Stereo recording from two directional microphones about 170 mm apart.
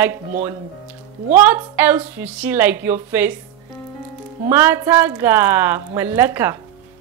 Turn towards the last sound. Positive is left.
turn(degrees=-15)  # may be behind; listen again after turning